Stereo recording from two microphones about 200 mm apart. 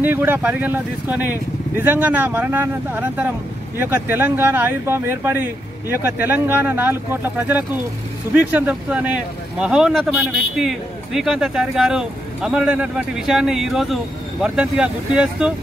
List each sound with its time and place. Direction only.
0.0 s speech: 10° right (ahead or behind)